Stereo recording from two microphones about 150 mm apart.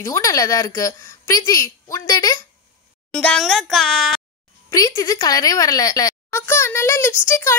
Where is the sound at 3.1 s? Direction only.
5° left (ahead or behind).